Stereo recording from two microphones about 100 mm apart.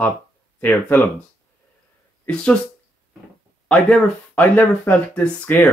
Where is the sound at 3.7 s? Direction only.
10° left (ahead or behind).